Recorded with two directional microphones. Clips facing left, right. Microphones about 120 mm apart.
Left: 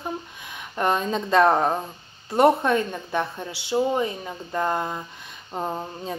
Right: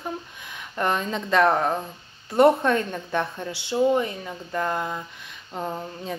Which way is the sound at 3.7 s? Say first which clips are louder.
Right 1 dB; 20° left (ahead or behind).